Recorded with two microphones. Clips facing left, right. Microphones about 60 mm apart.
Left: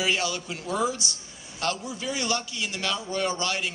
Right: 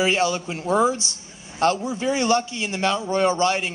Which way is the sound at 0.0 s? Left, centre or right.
Right.